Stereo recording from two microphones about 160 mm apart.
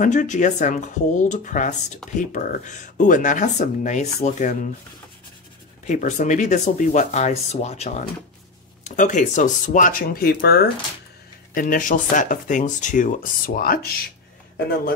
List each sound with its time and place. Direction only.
0.0 s speech: 50° left (ahead or behind)
5.9 s speech: 50° left (ahead or behind); by 10.7 s 80° left
11.5 s speech: 60° left (ahead or behind)